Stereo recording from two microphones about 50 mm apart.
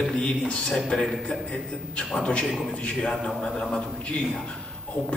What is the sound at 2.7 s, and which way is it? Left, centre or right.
A man's voice, centre.